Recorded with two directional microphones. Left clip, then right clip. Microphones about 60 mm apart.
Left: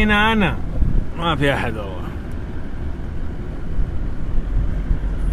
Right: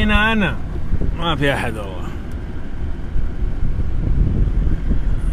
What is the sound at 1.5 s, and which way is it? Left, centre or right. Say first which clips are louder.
Speech: even; right.